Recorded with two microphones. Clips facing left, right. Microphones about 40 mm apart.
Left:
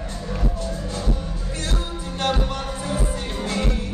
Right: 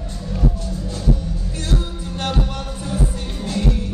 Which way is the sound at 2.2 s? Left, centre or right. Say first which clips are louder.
Left 1 dB; centre.